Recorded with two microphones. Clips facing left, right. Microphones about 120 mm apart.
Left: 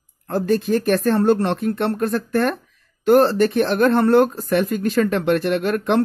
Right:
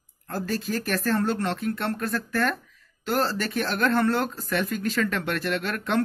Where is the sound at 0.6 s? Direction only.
25° left (ahead or behind).